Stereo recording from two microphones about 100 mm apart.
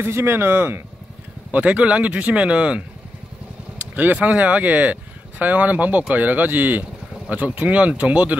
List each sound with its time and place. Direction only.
0.0 s speech: 20° right (ahead or behind)